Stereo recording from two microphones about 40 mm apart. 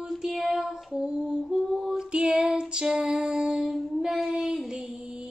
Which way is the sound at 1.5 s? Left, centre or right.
Centre.